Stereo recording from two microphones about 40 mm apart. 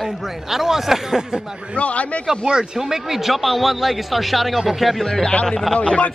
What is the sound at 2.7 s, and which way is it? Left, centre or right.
A man's voice, centre.